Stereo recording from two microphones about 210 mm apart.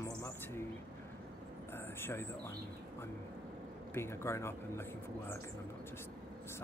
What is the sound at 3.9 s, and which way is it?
Speech, 10° left (ahead or behind).